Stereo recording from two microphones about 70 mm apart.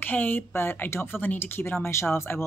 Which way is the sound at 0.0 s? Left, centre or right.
Left.